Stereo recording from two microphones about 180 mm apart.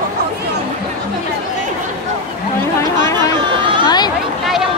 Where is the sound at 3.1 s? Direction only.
25° right (ahead or behind).